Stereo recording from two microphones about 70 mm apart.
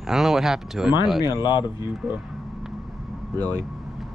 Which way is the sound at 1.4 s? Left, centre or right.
Left.